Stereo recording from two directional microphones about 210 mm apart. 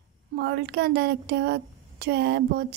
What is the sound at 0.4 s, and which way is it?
Speech, 50° right (ahead or behind).